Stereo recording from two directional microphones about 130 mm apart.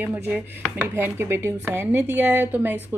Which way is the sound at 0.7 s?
20° right (ahead or behind).